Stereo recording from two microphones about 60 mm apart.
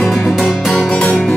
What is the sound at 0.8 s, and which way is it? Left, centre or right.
Music, centre.